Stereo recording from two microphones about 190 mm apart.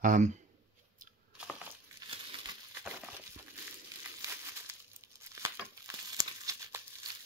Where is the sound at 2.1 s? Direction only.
25° right (ahead or behind).